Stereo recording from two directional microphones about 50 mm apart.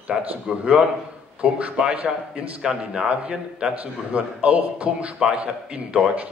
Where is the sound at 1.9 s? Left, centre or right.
Right.